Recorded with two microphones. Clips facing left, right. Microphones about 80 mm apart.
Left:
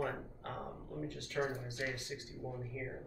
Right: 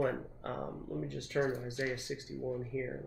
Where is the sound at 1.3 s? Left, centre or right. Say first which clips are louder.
Right 5 dB; right.